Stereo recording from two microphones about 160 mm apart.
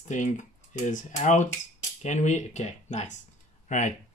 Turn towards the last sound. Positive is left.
turn(degrees=50)  # may be behind; listen again after turning